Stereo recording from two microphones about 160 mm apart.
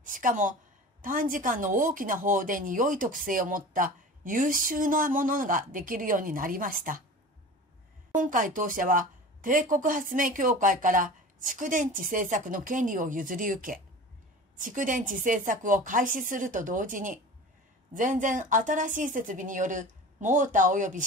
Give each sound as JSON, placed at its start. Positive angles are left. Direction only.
{"t": 0.0, "sound": "a woman's voice", "side_deg": -55}
{"t": 8.2, "sound": "speech", "side_deg": -55}